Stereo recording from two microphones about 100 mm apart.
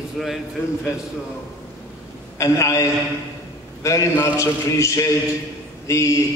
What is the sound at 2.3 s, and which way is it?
A man's voice, 30° left (ahead or behind).